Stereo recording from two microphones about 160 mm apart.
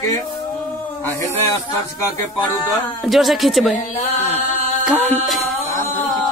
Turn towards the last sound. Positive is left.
turn(degrees=0)  # may be behind; listen again after turning